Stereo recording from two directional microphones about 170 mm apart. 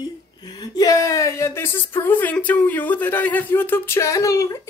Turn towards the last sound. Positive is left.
turn(degrees=20)  # may be behind; listen again after turning